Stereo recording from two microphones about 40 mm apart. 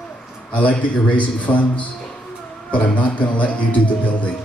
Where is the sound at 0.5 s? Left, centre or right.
Left.